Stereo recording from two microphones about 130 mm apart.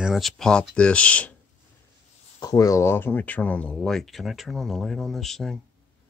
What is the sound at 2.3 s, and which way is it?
Speech, 30° left (ahead or behind).